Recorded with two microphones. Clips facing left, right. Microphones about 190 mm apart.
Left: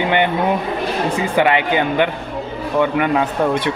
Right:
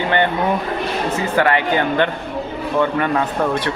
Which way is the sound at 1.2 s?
15° left (ahead or behind).